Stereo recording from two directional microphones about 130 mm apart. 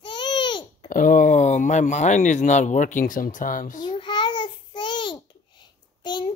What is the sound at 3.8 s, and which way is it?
Babbling, 35° left (ahead or behind).